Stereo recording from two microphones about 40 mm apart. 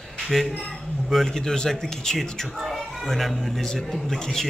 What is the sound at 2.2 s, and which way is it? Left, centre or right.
Speech, centre.